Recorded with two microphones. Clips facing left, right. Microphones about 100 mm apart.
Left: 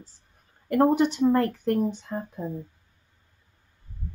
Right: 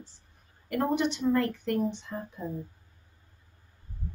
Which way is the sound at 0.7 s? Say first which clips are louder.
Left 7 dB; 40° left (ahead or behind).